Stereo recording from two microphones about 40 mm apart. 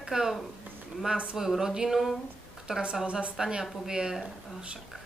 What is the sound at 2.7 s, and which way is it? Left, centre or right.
Speech, centre.